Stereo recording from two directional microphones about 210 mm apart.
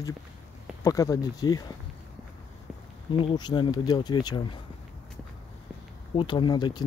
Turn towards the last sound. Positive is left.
turn(degrees=20)  # may be behind; listen again after turning